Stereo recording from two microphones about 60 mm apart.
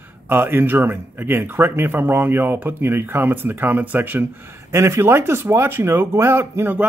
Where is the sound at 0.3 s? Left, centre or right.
Right.